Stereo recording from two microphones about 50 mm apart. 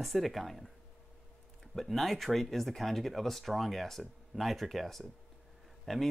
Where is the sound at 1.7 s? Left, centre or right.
Centre.